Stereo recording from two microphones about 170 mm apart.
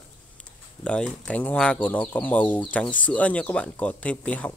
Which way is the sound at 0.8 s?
5° left (ahead or behind).